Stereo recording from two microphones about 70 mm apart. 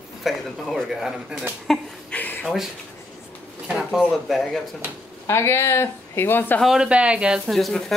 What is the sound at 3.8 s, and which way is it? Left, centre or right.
Speech, centre.